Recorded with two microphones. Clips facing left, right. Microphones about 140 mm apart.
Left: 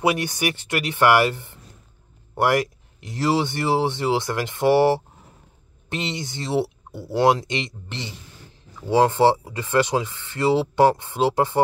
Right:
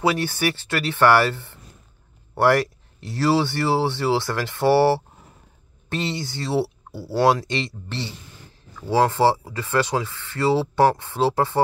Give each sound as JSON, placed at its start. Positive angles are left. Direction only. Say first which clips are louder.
{"t": 0.0, "sound": "speech", "louder": "even", "side_deg": 15}